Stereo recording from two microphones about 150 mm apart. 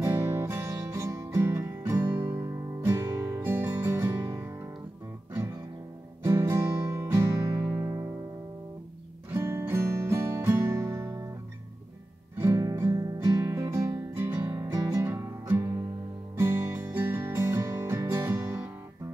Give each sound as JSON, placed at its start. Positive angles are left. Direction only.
{"t": 0.0, "sound": "music", "side_deg": -20}
{"t": 9.3, "sound": "music", "side_deg": -15}
{"t": 12.4, "sound": "music", "side_deg": -20}